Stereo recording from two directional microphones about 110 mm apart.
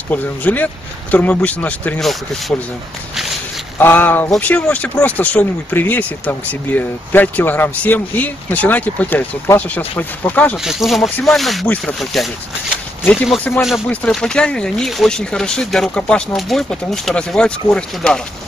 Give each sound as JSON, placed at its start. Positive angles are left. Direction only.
{"t": 0.1, "sound": "speech", "side_deg": 15}
{"t": 2.0, "sound": "speech", "side_deg": 0}
{"t": 3.7, "sound": "speech", "side_deg": 15}
{"t": 10.6, "sound": "speech", "side_deg": -5}
{"t": 11.6, "sound": "speech", "side_deg": 15}
{"t": 12.0, "sound": "speech", "side_deg": 0}
{"t": 13.6, "sound": "speech", "side_deg": -5}
{"t": 13.8, "sound": "speech", "side_deg": 5}